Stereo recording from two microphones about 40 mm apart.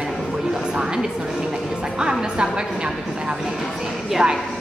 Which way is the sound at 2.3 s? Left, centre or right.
Right.